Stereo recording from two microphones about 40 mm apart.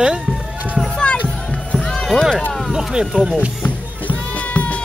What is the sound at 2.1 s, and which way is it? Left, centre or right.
Speech, centre.